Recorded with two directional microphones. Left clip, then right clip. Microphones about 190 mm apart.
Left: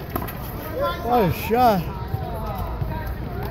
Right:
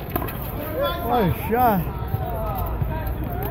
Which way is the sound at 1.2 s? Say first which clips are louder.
Left 2 dB; 45° left (ahead or behind).